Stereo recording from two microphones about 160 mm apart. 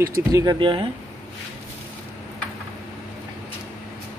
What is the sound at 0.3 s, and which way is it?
Speech, 25° right (ahead or behind).